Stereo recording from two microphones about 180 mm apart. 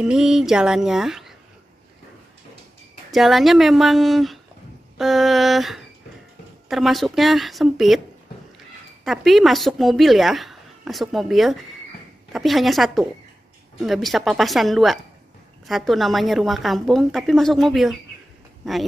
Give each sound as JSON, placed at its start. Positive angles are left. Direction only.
{"t": 0.0, "sound": "speech", "side_deg": -5}
{"t": 3.1, "sound": "speech", "side_deg": 0}
{"t": 9.0, "sound": "speech", "side_deg": 0}